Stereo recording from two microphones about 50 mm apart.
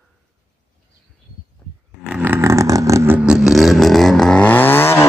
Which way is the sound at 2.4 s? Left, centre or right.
Right.